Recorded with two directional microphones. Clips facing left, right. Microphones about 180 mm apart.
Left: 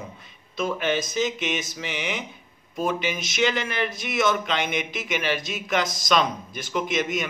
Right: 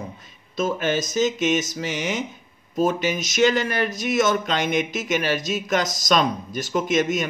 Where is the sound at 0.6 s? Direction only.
40° right (ahead or behind).